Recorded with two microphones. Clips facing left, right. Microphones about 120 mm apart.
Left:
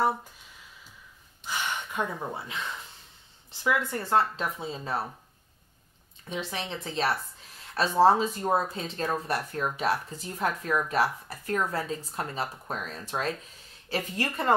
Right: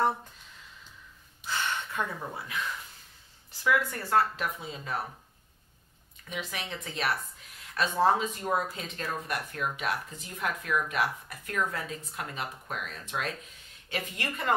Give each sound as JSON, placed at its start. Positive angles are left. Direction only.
{"t": 1.4, "sound": "gasp", "side_deg": 15}
{"t": 3.6, "sound": "speech", "side_deg": 25}
{"t": 6.2, "sound": "speech", "side_deg": 30}